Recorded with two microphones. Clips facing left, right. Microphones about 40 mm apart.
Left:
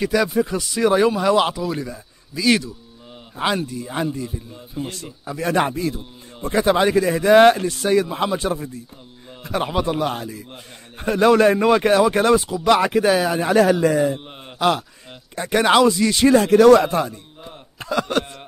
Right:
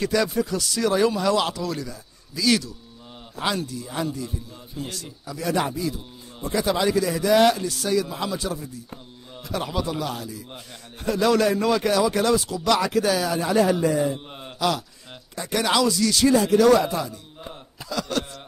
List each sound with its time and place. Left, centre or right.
0.0 s speech: centre
0.5 s speech: left
12.4 s speech: centre
13.5 s a man's voice: left
14.1 s speech: left
16.3 s speech: left